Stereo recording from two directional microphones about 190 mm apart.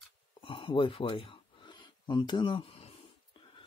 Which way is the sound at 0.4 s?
25° left (ahead or behind).